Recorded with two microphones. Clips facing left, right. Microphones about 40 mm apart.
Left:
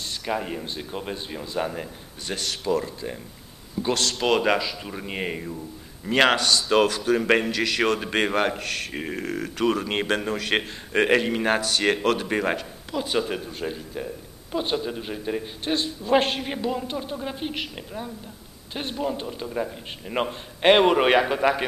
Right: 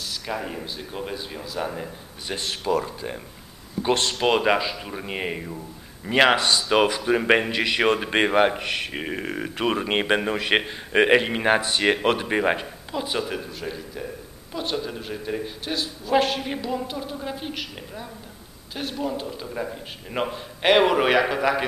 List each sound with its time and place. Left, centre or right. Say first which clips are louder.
0.2 s speech: left 4 dB; centre
1.4 s a man's voice: left 2 dB; centre
2.3 s speech: right 1 dB; right
4.2 s speech: even; centre
6.4 s speech: even; centre
12.9 s speech: left 2 dB; centre
13.5 s a man's voice: left 1 dB; centre
19.4 s a man's voice: left 2 dB; centre